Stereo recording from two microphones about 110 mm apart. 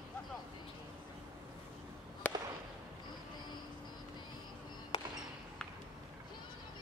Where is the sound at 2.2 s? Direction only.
15° left (ahead or behind).